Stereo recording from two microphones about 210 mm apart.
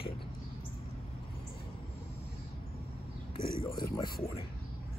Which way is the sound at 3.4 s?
25° left (ahead or behind).